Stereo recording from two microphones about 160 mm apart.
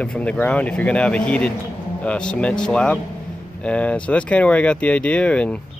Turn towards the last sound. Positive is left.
turn(degrees=5)  # may be behind; listen again after turning